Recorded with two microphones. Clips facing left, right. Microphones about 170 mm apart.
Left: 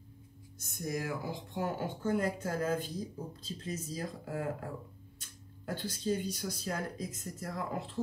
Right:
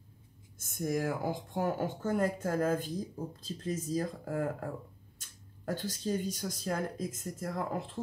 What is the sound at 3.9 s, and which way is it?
Speech, 45° right (ahead or behind).